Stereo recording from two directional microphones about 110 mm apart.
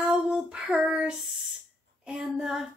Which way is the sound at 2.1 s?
5° right (ahead or behind).